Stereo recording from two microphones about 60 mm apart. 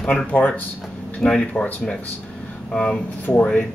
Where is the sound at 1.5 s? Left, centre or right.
Left.